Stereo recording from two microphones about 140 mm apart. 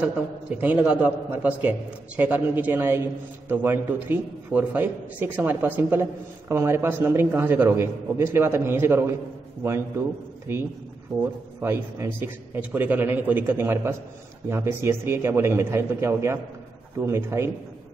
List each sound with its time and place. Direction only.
0.6 s a man's voice: 10° right (ahead or behind)
11.1 s a man's voice: 20° right (ahead or behind)